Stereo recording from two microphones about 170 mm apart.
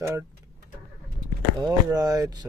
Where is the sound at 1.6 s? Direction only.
20° right (ahead or behind).